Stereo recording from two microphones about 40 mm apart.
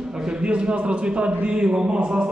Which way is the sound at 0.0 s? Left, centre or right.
Centre.